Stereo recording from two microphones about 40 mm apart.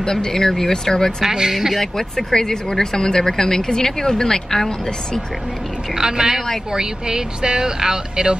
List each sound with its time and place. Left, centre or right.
0.0 s speech: centre
1.2 s speech: centre
1.8 s speech: centre
5.9 s speech: centre